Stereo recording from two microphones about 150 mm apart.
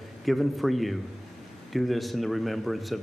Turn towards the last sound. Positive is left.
turn(degrees=0)  # may be behind; listen again after turning